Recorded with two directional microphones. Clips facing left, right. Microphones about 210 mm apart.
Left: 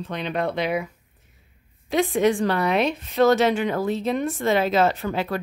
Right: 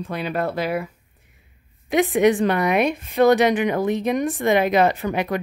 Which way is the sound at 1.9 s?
15° right (ahead or behind).